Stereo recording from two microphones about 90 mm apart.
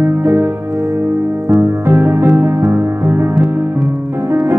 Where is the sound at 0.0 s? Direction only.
25° right (ahead or behind).